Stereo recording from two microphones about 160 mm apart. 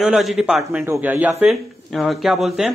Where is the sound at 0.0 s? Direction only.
Centre (ahead or behind).